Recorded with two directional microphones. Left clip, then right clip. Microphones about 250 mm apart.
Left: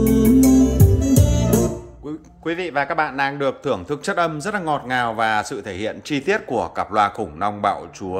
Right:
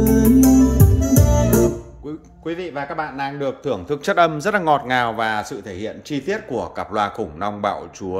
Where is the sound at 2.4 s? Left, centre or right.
Centre.